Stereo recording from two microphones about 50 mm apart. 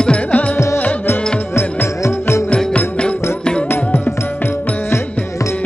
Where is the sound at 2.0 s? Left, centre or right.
Left.